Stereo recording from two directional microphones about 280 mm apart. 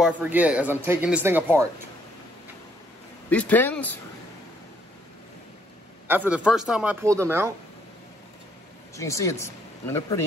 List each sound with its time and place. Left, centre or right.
0.0 s speech: centre
3.3 s speech: centre
6.0 s speech: centre
8.9 s speech: centre